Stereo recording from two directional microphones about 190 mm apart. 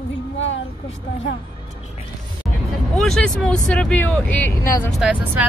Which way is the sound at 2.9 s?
Centre (ahead or behind).